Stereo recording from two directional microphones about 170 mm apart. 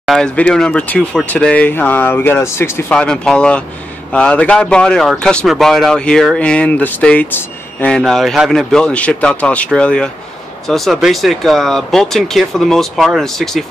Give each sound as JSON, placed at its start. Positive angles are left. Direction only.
{"t": 0.0, "sound": "a man's voice", "side_deg": 5}